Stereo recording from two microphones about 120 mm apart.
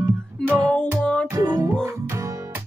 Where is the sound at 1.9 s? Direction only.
25° right (ahead or behind).